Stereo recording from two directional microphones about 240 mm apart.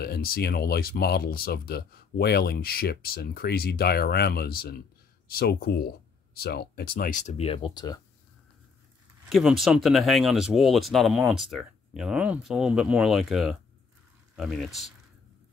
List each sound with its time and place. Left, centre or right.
0.0 s speech: left; by 8.0 s centre
9.3 s speech: centre